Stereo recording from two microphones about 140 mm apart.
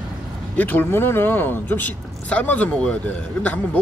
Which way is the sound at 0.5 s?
15° left (ahead or behind).